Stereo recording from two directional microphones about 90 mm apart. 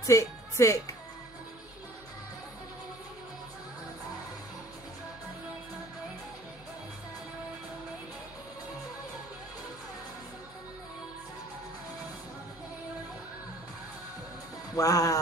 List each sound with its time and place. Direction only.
0.0 s speech: 35° left (ahead or behind)
14.8 s speech: 40° left (ahead or behind)